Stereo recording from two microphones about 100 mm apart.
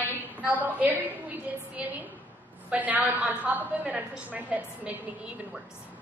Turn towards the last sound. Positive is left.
turn(degrees=-15)  # may be behind; listen again after turning